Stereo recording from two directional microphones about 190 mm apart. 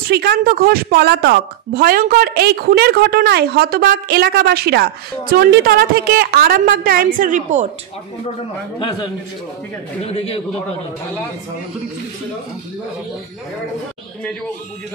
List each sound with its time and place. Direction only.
0.1 s a woman's voice: 55° right (ahead or behind)
8.7 s a man's voice: 25° left (ahead or behind)